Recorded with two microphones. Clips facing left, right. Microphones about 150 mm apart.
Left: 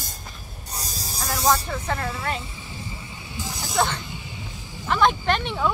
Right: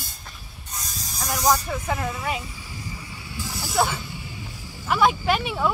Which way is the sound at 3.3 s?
20° left (ahead or behind).